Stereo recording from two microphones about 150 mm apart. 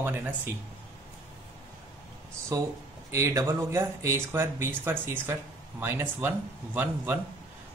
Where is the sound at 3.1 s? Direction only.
20° right (ahead or behind).